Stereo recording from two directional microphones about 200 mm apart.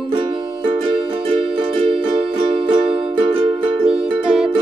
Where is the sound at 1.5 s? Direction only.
25° right (ahead or behind).